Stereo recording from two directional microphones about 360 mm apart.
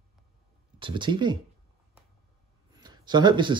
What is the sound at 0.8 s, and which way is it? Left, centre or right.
Speech, centre.